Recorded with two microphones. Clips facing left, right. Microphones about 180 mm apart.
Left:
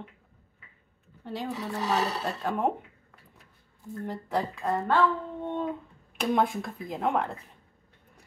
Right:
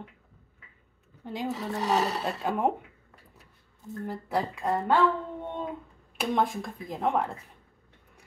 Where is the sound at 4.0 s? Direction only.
10° right (ahead or behind).